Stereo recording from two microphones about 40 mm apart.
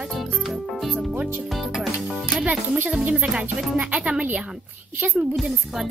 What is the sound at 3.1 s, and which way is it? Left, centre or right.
Speech, right.